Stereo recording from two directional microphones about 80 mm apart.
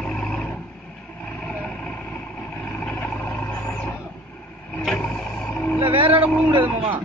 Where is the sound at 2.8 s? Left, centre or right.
Centre.